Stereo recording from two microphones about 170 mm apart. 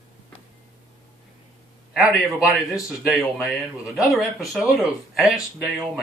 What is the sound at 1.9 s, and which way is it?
Speech, centre (ahead or behind).